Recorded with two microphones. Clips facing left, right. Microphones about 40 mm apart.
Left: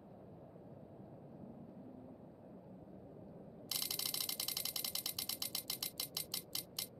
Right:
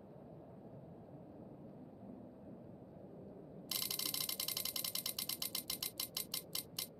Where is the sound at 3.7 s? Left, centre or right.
Centre.